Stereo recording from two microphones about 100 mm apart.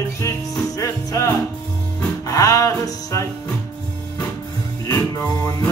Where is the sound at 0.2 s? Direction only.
35° left (ahead or behind).